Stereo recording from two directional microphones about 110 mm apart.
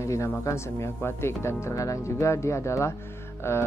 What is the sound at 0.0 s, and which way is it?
Speech, 25° left (ahead or behind).